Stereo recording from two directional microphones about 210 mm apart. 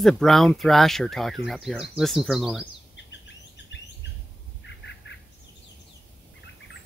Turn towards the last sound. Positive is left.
turn(degrees=60)  # may be behind; listen again after turning